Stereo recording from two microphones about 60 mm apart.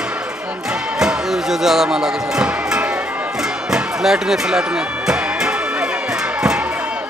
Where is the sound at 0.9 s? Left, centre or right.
Centre.